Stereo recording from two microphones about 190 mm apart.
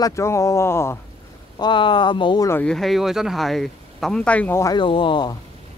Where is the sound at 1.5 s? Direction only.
25° left (ahead or behind).